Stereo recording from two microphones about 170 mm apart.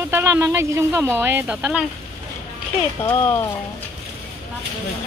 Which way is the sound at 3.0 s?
15° left (ahead or behind).